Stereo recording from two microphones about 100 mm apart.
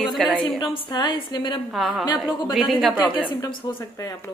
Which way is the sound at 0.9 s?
45° left (ahead or behind).